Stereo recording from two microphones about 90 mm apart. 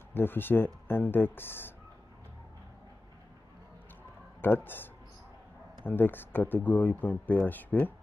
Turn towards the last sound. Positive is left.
turn(degrees=20)  # may be behind; listen again after turning